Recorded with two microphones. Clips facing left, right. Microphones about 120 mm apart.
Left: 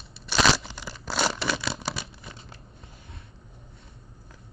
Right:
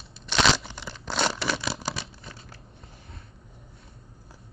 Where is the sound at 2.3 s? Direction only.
25° left (ahead or behind).